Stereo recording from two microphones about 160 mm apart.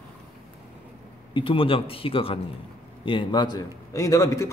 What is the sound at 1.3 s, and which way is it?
A man's voice, 35° left (ahead or behind).